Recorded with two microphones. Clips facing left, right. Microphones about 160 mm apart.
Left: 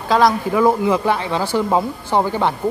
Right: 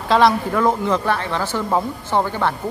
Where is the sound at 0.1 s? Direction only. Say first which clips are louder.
Even; 5° left (ahead or behind).